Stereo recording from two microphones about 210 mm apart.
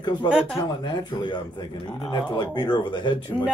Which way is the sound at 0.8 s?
20° left (ahead or behind).